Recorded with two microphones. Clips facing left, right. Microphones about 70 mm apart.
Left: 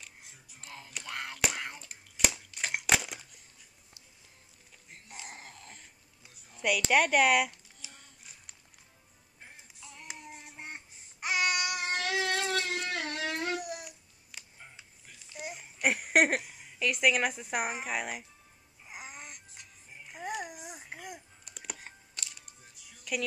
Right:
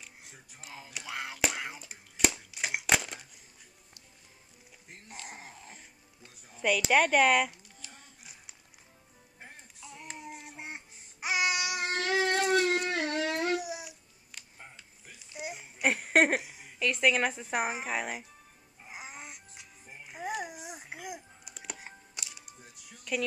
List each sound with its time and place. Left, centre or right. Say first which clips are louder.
0.6 s whispering: even; centre
5.3 s dog: right 1 dB; centre
6.5 s a woman's voice: right 2 dB; centre
6.8 s a sound: right 1 dB; centre
9.8 s child singing: right 3 dB; centre
10.1 s babbling: right 4 dB; centre
12.1 s a sound: right 5 dB; right
12.4 s a sound: right 6 dB; centre
15.3 s babbling: right 2 dB; centre
15.8 s a sound: right 1 dB; centre
16.9 s a woman's voice: right 1 dB; centre
18.9 s music: right 1 dB; centre
23.1 s speech: right 2 dB; centre